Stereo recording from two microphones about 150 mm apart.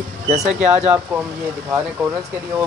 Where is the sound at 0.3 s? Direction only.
50° right (ahead or behind).